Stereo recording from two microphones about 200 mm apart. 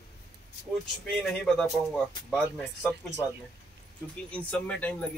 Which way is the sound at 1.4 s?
5° left (ahead or behind).